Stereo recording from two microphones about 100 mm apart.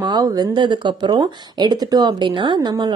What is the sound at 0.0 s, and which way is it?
Speech, 45° right (ahead or behind).